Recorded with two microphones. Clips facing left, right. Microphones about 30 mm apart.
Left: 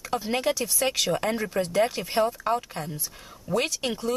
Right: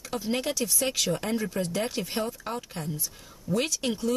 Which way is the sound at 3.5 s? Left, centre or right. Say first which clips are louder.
Left 2 dB; left.